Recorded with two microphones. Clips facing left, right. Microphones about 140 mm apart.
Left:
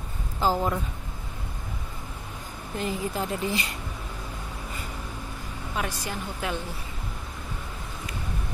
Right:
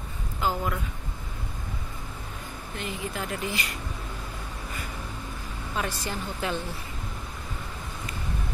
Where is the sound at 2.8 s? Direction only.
35° left (ahead or behind).